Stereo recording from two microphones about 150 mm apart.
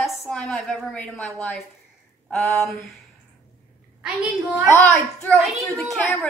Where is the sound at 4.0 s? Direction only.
Centre (ahead or behind).